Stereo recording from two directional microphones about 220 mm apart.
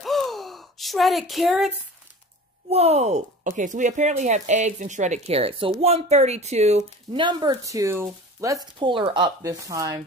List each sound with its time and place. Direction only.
0.0 s a sound: centre (ahead or behind)
2.7 s speech: 30° right (ahead or behind)
6.8 s speech: 20° right (ahead or behind)